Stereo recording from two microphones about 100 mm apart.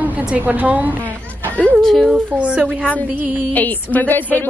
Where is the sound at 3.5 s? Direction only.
15° left (ahead or behind).